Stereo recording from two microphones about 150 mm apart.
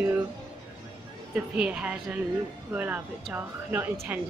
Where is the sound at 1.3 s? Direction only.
5° right (ahead or behind).